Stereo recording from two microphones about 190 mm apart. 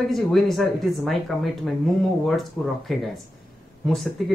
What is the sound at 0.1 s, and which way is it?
Speech, centre (ahead or behind).